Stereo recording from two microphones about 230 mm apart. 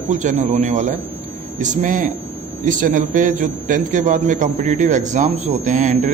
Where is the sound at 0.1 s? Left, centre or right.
Right.